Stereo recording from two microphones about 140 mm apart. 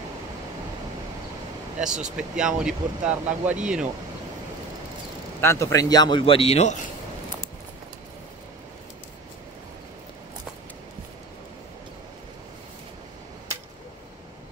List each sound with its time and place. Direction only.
1.8 s speech: 5° right (ahead or behind)
5.4 s speech: 20° left (ahead or behind); by 6.8 s 50° left (ahead or behind)